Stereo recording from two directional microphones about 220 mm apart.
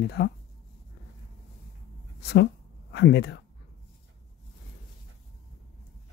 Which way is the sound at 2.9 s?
50° left (ahead or behind).